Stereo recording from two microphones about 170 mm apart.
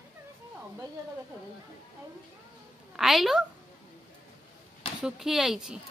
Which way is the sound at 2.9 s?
Centre (ahead or behind).